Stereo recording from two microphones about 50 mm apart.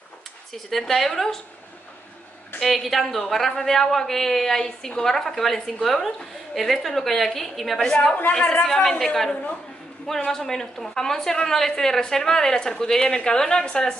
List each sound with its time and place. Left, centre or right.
0.5 s a woman's voice: centre
2.6 s a woman's voice: centre
7.9 s a woman's voice: centre
8.6 s a woman's voice: centre
9.3 s a woman's voice: left
10.0 s a woman's voice: centre